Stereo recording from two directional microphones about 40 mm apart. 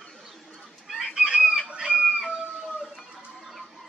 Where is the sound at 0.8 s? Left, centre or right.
Centre.